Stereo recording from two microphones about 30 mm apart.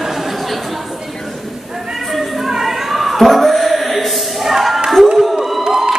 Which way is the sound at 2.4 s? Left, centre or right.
Centre.